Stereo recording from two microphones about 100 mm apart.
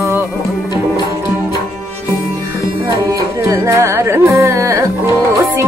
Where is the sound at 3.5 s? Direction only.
30° right (ahead or behind).